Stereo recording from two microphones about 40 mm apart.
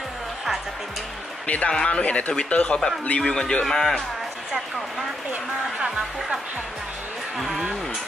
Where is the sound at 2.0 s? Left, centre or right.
Left.